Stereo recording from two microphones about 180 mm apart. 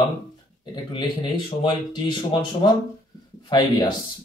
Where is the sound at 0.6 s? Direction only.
25° left (ahead or behind).